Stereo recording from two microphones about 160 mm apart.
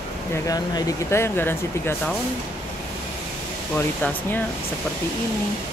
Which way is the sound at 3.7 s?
10° left (ahead or behind).